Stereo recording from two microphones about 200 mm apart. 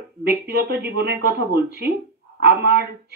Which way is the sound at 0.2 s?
50° right (ahead or behind).